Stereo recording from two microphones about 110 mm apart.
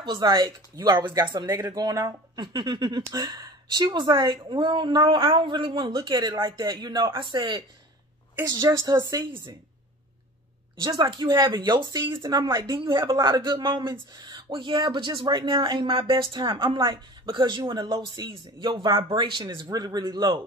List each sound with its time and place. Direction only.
0.0 s speech: 45° right (ahead or behind)
8.5 s speech: 30° right (ahead or behind)
9.2 s speech: 45° right (ahead or behind)
10.8 s speech: 40° right (ahead or behind)